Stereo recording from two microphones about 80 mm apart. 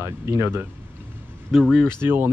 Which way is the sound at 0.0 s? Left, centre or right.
Right.